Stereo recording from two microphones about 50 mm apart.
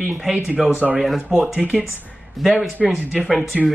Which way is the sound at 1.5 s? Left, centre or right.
Right.